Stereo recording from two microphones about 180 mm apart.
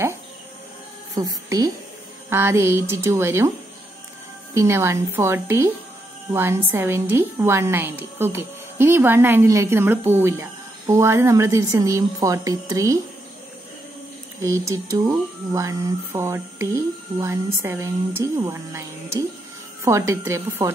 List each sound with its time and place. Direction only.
1.1 s a woman's voice: 20° right (ahead or behind)
4.6 s a woman's voice: 15° right (ahead or behind)
14.4 s a woman's voice: 15° right (ahead or behind)